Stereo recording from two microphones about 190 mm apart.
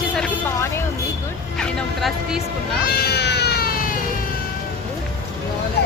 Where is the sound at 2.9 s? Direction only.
55° left (ahead or behind).